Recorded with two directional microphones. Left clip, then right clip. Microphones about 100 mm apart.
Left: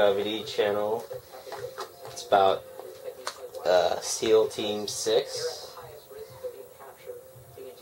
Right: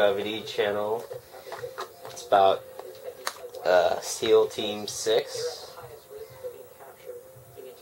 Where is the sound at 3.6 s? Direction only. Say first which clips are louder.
Right 1 dB; 10° right (ahead or behind).